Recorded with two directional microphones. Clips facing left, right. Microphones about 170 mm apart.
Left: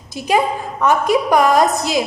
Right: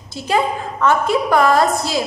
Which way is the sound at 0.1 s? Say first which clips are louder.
Left 2 dB; 15° left (ahead or behind).